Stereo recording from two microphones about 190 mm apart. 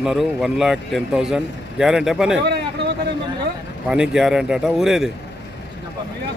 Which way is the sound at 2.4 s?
65° right (ahead or behind).